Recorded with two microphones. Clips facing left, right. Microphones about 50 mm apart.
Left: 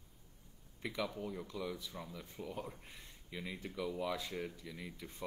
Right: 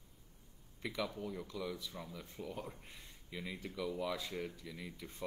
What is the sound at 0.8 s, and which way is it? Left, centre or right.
Speech, centre.